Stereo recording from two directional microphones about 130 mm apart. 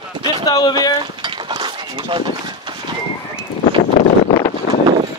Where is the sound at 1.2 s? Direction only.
35° right (ahead or behind).